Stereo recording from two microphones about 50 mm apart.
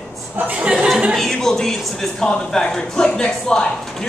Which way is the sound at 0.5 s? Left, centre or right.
Right.